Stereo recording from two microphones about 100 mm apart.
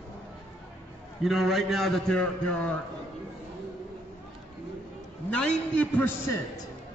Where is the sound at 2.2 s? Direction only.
15° left (ahead or behind).